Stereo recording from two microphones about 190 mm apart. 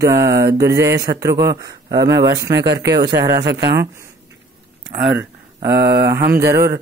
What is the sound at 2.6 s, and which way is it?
Speech, 65° right (ahead or behind).